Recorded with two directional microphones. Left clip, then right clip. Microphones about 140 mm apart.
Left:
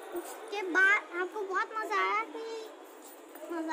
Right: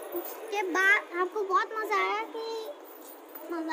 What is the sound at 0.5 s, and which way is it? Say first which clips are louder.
A child's voice: right 1 dB; 5° right (ahead or behind).